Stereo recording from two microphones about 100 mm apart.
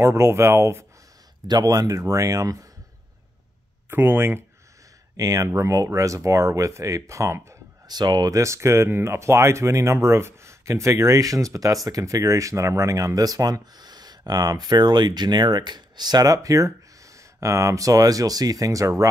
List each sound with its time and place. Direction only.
0.0 s speech: 25° right (ahead or behind)
1.5 s speech: 40° right (ahead or behind)
3.9 s speech: 20° right (ahead or behind)
5.1 s speech: 35° right (ahead or behind)
7.9 s speech: 45° right (ahead or behind)